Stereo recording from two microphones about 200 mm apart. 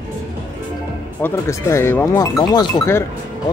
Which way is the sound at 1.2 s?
15° left (ahead or behind).